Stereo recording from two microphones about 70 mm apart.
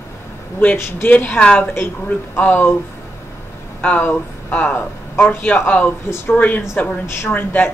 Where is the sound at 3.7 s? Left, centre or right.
Left.